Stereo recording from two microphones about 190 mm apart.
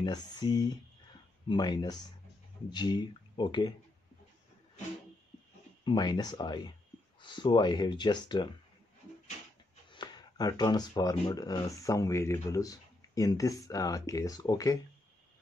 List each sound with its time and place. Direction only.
0.0 s speech: 25° left (ahead or behind)
5.9 s speech: 20° left (ahead or behind)
9.8 s speech: 25° left (ahead or behind)